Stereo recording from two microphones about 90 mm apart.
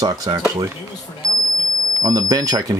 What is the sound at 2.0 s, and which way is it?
Speech, 40° right (ahead or behind).